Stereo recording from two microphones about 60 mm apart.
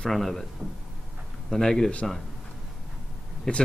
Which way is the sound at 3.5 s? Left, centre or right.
Centre.